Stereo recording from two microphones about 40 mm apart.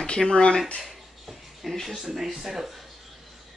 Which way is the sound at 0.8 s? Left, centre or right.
Centre.